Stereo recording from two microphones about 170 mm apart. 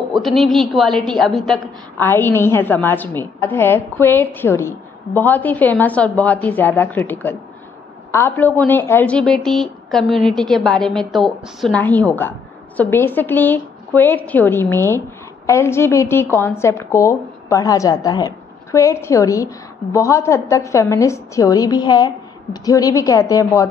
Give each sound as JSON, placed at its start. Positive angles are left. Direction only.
{"t": 0.1, "sound": "a woman's voice", "side_deg": 0}
{"t": 2.0, "sound": "a woman's voice", "side_deg": 15}